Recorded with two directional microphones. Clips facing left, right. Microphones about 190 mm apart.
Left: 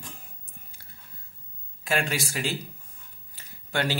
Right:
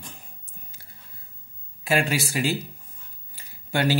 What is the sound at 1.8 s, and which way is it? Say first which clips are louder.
Speech: right 4 dB; 5° right (ahead or behind).